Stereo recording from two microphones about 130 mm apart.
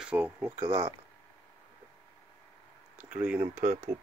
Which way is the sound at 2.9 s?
10° right (ahead or behind).